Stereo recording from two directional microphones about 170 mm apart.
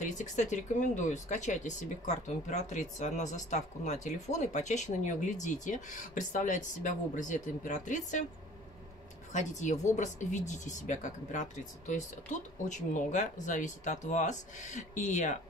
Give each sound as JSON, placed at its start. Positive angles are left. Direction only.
{"t": 0.0, "sound": "speech", "side_deg": 45}
{"t": 9.3, "sound": "speech", "side_deg": 45}